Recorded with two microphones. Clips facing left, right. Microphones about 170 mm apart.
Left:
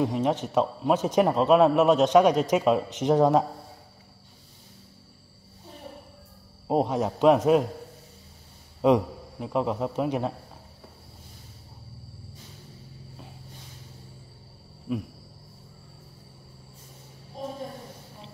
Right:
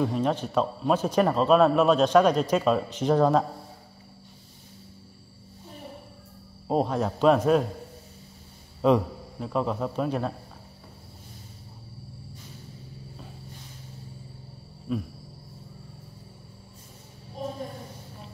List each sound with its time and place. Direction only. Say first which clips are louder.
0.0 s a man's voice: left 1 dB; 15° left (ahead or behind)
6.7 s a man's voice: left 1 dB; 15° left (ahead or behind)
8.8 s a man's voice: left 1 dB; 15° left (ahead or behind)
14.9 s a sound: even; 15° left (ahead or behind)